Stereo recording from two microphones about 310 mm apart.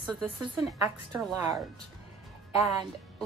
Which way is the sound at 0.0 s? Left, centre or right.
Centre.